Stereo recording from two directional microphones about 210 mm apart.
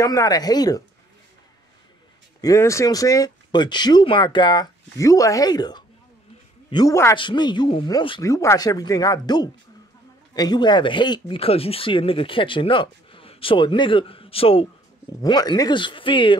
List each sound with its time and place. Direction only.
0.0 s speech: 15° left (ahead or behind)
2.4 s speech: 15° left (ahead or behind)